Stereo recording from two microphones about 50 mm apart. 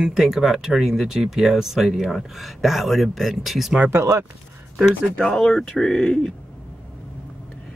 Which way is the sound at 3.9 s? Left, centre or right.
Right.